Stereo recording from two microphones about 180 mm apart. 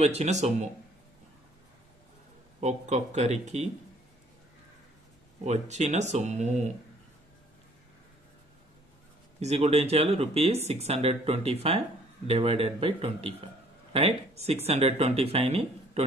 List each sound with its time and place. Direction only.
0.0 s speech: 35° right (ahead or behind)
2.6 s speech: 40° right (ahead or behind)
5.4 s speech: 40° right (ahead or behind)
9.4 s speech: 35° right (ahead or behind)